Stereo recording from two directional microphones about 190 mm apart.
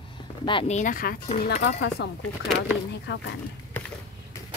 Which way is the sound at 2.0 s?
65° left (ahead or behind).